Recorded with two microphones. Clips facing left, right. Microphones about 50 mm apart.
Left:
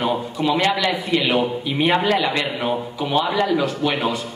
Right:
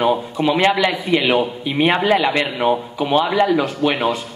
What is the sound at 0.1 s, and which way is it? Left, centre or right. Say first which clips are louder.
A man's voice: right 3 dB; centre.